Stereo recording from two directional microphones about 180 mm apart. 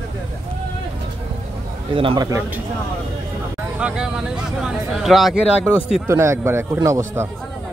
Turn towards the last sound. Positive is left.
turn(degrees=-15)  # may be behind; listen again after turning